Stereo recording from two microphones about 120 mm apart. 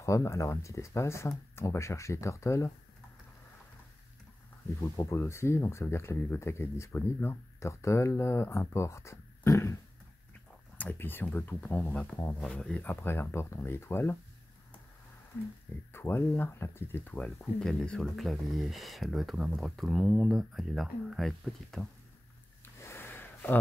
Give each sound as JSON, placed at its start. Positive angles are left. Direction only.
{"t": 0.0, "sound": "speech", "side_deg": 25}
{"t": 4.7, "sound": "speech", "side_deg": 25}
{"t": 10.8, "sound": "speech", "side_deg": 15}
{"t": 15.9, "sound": "speech", "side_deg": 20}
{"t": 22.8, "sound": "a sound", "side_deg": 20}